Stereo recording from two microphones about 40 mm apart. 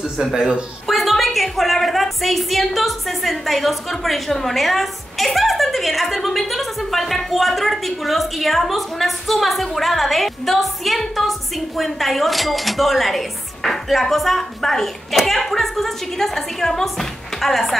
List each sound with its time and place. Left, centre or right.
0.2 s speech: centre
0.8 s a woman's voice: centre